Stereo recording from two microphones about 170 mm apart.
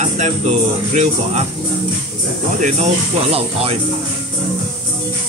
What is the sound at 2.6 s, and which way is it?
Speech, 40° right (ahead or behind).